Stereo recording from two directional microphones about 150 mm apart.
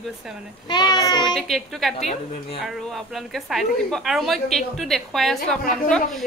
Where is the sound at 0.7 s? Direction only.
30° left (ahead or behind).